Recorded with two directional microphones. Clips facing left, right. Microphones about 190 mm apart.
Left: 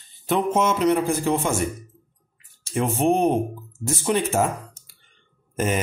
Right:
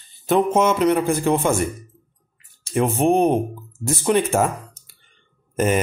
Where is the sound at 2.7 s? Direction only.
55° right (ahead or behind).